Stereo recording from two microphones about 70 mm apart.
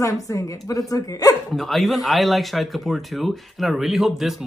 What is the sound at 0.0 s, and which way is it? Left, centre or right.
A woman's voice, left.